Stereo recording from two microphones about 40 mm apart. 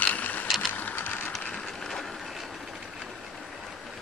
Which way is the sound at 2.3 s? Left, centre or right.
Centre.